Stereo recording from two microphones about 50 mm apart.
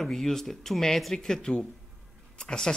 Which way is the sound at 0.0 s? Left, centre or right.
Centre.